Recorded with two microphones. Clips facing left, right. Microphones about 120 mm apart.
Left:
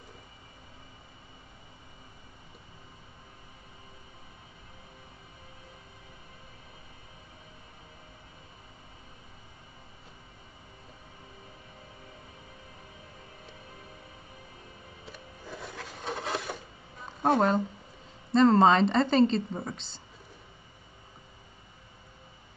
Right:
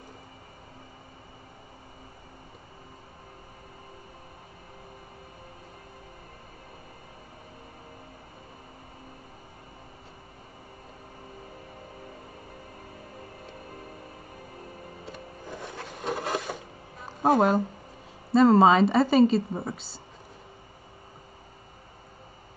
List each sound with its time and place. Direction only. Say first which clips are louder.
15.6 s filing: right 5 dB; centre (ahead or behind)
18.3 s speech: right 2 dB; 10° right (ahead or behind)